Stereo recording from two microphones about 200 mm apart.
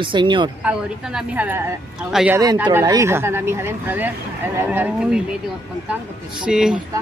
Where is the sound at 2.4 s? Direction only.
20° right (ahead or behind).